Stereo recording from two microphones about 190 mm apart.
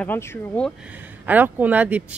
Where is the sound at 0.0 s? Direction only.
10° left (ahead or behind).